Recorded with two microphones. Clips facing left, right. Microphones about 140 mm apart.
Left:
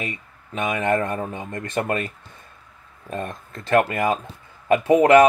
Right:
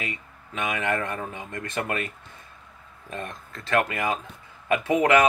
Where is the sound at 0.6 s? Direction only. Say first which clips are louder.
Left 5 dB; 30° left (ahead or behind).